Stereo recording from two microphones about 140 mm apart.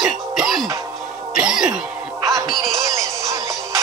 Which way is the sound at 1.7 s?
25° right (ahead or behind).